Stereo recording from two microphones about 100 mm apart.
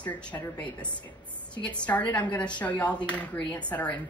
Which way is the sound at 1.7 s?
15° left (ahead or behind).